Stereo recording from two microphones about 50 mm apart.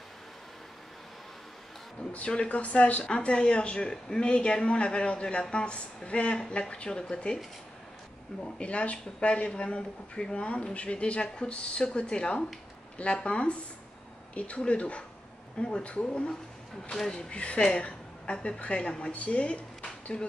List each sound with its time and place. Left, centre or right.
2.1 s a woman's voice: left
8.5 s a woman's voice: left
16.9 s a woman's voice: centre